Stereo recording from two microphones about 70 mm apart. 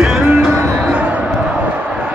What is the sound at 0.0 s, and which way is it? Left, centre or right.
Music, centre.